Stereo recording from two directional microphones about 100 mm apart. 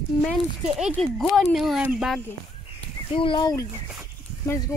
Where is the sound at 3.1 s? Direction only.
60° left (ahead or behind).